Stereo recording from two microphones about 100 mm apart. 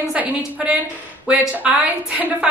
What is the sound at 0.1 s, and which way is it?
A woman's voice, 15° right (ahead or behind).